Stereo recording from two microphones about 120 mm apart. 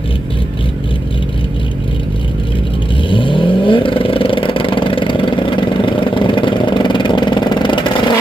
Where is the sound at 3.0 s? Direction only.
45° left (ahead or behind).